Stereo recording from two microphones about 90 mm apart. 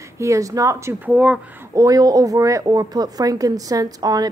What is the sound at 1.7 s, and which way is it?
Speech, 40° right (ahead or behind).